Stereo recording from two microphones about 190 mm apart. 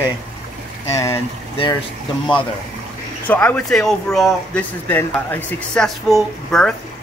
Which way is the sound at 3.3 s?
10° left (ahead or behind).